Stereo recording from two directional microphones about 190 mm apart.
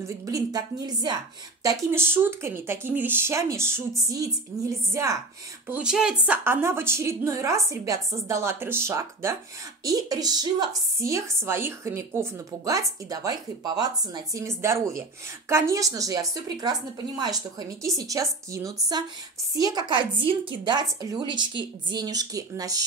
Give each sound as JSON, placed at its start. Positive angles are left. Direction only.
{"t": 0.0, "sound": "a woman's voice", "side_deg": -15}
{"t": 5.7, "sound": "a woman's voice", "side_deg": -5}